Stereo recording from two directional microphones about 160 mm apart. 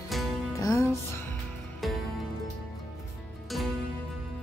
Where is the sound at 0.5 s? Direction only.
20° left (ahead or behind).